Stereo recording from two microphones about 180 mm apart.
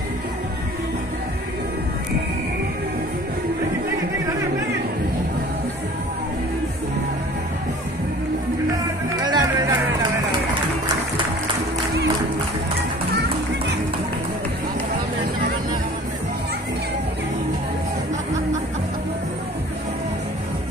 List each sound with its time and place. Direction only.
9.2 s music: 20° right (ahead or behind)